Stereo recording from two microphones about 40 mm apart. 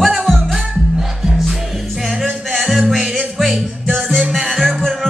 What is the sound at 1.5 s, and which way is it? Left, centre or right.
Music, centre.